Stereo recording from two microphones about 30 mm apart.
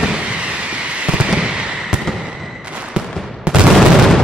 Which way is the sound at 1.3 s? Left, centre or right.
Right.